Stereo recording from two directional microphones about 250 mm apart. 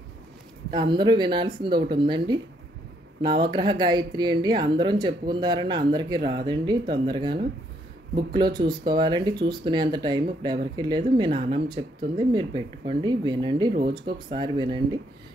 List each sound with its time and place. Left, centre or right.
0.7 s speech: centre